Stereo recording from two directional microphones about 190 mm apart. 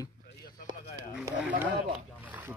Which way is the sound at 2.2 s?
10° right (ahead or behind).